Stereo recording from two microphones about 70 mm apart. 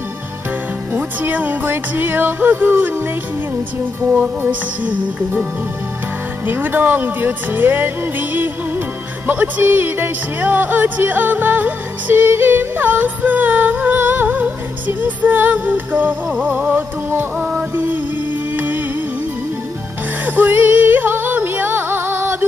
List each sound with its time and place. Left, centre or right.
0.9 s speech: right
4.1 s speech: right
17.7 s music: right
20.2 s music: right